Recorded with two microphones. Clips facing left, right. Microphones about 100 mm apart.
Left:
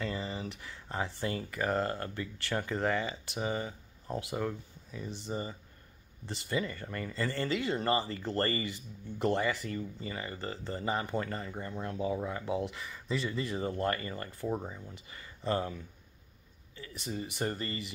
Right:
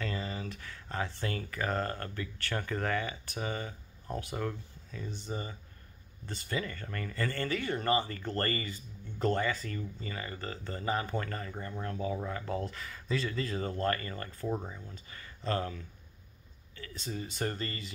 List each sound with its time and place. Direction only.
0.0 s speech: 20° left (ahead or behind)